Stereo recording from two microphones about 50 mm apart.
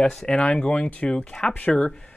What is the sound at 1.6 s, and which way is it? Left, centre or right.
Speech, left.